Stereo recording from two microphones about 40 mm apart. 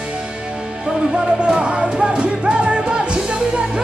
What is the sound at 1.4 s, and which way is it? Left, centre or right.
Music, right.